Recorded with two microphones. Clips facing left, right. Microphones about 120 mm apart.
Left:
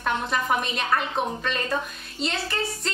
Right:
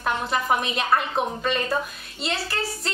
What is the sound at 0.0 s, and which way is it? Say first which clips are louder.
A woman's voice: right 1 dB; 5° right (ahead or behind).